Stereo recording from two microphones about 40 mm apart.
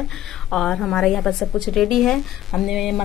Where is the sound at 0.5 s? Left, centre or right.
Centre.